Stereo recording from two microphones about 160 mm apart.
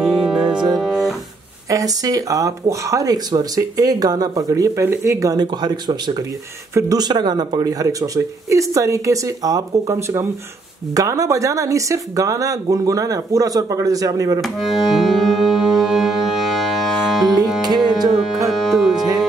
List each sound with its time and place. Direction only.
0.0 s music: centre (ahead or behind)
1.7 s speech: 20° right (ahead or behind)
14.4 s music: centre (ahead or behind)
18.5 s music: centre (ahead or behind)